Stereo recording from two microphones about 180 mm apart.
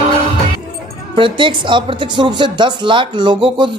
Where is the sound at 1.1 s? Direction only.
30° right (ahead or behind).